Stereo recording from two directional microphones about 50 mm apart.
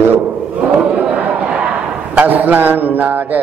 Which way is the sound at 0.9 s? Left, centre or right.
Right.